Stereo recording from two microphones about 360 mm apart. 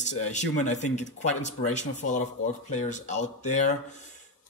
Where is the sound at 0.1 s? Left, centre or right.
Centre.